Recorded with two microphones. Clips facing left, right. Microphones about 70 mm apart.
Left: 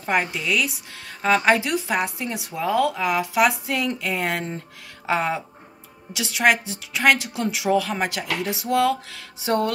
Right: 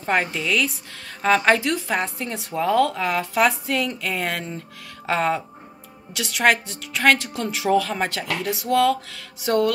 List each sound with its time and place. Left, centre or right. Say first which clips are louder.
0.1 s a woman's voice: right 1 dB; centre; by 9.8 s left